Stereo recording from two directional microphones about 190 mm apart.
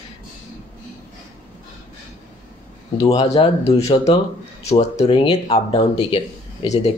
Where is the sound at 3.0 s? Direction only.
25° left (ahead or behind).